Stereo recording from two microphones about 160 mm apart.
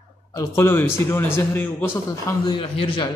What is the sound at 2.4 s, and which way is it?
Speech, 30° left (ahead or behind).